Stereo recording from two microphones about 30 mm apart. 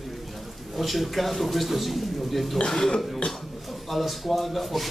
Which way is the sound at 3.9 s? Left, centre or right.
Centre.